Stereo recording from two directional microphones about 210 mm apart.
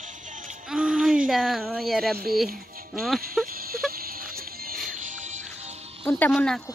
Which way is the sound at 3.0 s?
Centre (ahead or behind).